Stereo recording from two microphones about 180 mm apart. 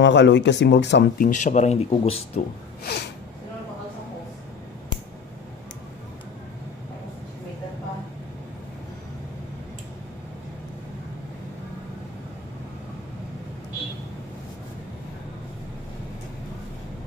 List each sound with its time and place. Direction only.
0.0 s speech: 75° left (ahead or behind)
1.2 s speech: 40° left (ahead or behind)
2.8 s a sound: 60° left (ahead or behind)